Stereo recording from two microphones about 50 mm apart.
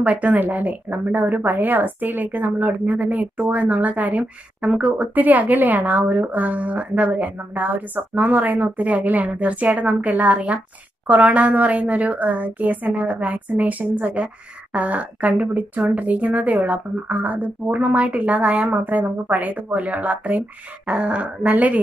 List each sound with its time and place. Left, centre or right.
0.0 s speech: right